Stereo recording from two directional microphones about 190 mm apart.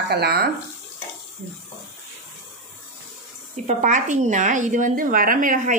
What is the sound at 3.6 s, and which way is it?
A woman's voice, 40° right (ahead or behind).